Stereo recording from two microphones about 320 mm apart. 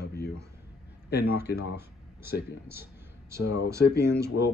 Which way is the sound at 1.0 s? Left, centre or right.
Left.